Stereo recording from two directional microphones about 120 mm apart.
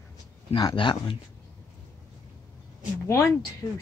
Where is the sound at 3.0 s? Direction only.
25° left (ahead or behind).